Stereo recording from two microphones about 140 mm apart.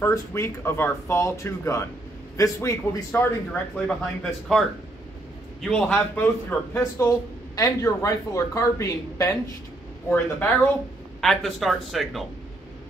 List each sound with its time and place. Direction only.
0.0 s speech: 20° left (ahead or behind)
3.7 s a man's voice: 5° left (ahead or behind)
6.8 s speech: 25° left (ahead or behind)
10.0 s a man's voice: 10° left (ahead or behind)
11.1 s speech: centre (ahead or behind)